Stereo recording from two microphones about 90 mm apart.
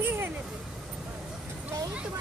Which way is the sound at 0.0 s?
25° right (ahead or behind).